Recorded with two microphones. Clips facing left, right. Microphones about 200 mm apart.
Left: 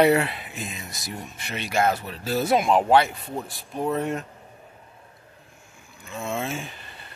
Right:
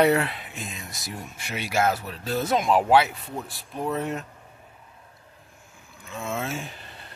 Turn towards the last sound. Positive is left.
turn(degrees=0)  # may be behind; listen again after turning